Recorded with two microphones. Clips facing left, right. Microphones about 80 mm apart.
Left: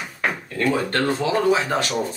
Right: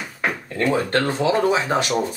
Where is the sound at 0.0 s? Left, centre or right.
Centre.